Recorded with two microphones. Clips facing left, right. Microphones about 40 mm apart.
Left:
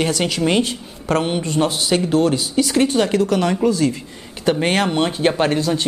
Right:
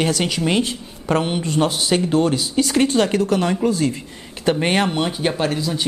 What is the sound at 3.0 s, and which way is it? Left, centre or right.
Speech, right.